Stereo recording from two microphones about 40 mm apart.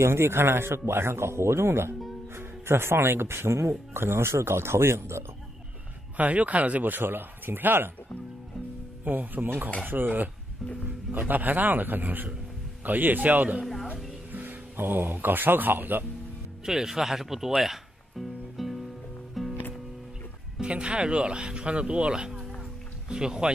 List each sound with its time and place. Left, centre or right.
0.0 s speech: right
6.1 s speech: right
6.9 s speech: right
9.0 s speech: right
16.6 s speech: centre
17.6 s music: centre
20.6 s speech: right